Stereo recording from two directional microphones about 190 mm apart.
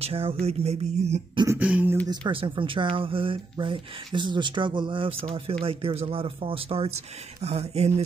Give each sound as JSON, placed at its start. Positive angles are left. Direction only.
{"t": 0.0, "sound": "speech", "side_deg": -30}
{"t": 1.6, "sound": "speech", "side_deg": -5}
{"t": 2.0, "sound": "speech", "side_deg": -25}